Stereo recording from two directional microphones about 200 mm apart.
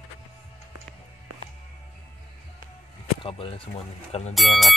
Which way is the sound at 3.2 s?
30° left (ahead or behind).